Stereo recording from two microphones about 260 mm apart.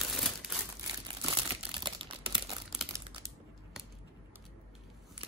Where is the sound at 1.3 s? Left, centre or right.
Centre.